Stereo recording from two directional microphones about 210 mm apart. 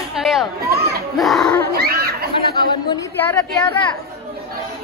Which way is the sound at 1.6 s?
45° right (ahead or behind).